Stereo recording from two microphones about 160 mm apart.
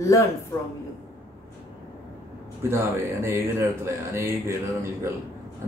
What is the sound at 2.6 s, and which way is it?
A man's voice, 15° right (ahead or behind).